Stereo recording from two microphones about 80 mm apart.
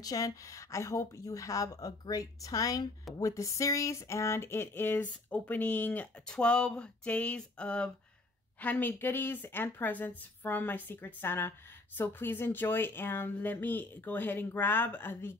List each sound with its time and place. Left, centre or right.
0.0 s a woman's voice: left
3.2 s a sound: left
6.2 s speech: centre